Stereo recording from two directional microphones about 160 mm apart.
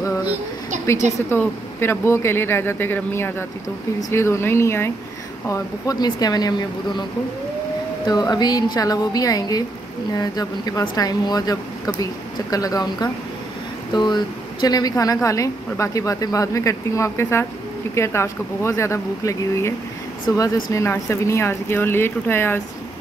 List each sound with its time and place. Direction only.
1.1 s speech: 15° left (ahead or behind)
8.1 s speech: 25° left (ahead or behind)